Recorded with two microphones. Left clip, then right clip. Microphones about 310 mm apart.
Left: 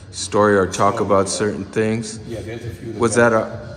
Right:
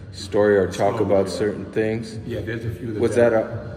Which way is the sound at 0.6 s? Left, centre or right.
Left.